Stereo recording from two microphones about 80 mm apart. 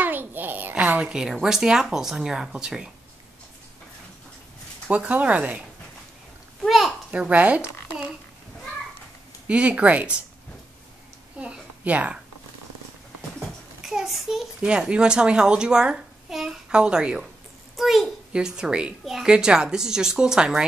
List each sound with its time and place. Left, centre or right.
0.0 s a child's voice: right; by 2.9 s centre
4.8 s a woman's voice: centre
6.6 s a sound: centre
7.1 s speech: centre
9.5 s a woman's voice: centre
11.3 s a sound: centre
13.8 s a child's voice: centre
17.7 s a sound: centre
18.3 s a woman's voice: centre